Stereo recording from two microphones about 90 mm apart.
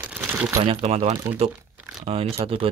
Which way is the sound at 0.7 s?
90° right.